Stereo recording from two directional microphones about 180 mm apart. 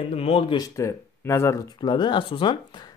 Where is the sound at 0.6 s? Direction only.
15° left (ahead or behind).